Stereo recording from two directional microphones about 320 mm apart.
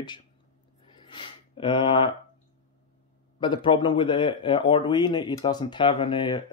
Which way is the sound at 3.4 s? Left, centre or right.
Centre.